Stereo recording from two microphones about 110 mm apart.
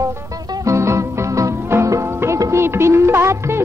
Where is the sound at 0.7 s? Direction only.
25° right (ahead or behind).